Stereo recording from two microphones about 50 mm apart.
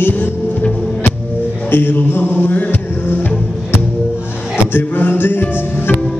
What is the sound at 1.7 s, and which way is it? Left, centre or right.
Music, left.